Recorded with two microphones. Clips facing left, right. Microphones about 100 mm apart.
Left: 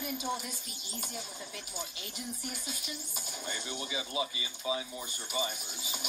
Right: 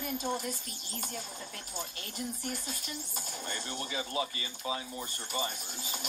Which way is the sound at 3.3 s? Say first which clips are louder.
Left 1 dB; 5° left (ahead or behind).